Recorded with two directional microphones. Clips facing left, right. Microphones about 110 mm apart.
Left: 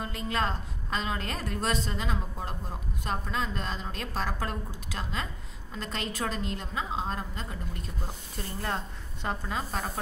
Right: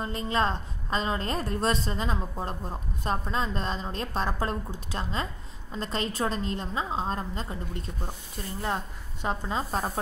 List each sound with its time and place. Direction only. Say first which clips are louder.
0.0 s a woman's voice: right 3 dB; 30° right (ahead or behind)
8.6 s a woman's voice: right 3 dB; 15° right (ahead or behind)
9.5 s a woman's voice: right 4 dB; 30° right (ahead or behind)